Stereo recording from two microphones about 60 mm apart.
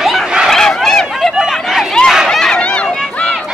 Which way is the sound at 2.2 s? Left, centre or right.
Centre.